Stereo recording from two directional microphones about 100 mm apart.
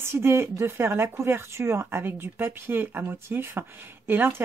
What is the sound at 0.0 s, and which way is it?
Speech, 25° right (ahead or behind).